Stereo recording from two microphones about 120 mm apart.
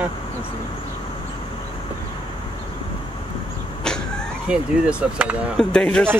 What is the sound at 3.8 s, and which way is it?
Vehicle, 5° left (ahead or behind).